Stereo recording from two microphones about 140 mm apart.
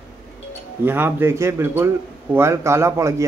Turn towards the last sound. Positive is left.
turn(degrees=-20)  # may be behind; listen again after turning